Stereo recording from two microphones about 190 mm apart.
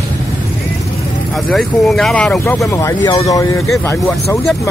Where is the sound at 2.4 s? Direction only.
15° left (ahead or behind).